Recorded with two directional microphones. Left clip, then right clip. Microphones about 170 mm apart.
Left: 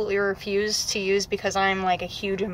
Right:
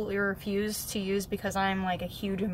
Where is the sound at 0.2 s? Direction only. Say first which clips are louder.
Left 6 dB; 15° right (ahead or behind).